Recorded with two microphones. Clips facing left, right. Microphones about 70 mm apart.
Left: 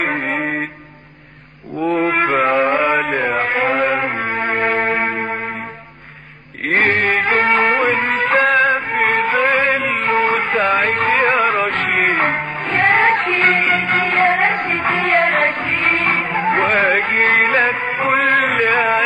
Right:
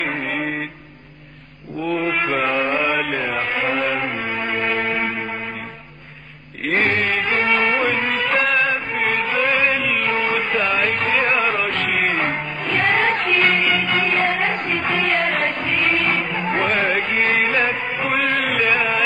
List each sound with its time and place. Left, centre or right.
0.0 s mantra: left
1.9 s mantra: left
2.4 s mantra: left
3.0 s chant: left
3.8 s music: left
6.7 s mantra: left
7.2 s music: left
8.7 s music: left
9.3 s music: left
11.9 s music: left
12.2 s music: left
18.0 s chant: left